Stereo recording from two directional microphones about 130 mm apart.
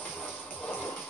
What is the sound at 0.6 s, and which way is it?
Music, 10° left (ahead or behind).